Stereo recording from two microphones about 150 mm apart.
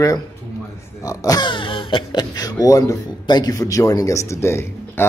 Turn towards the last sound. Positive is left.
turn(degrees=15)  # may be behind; listen again after turning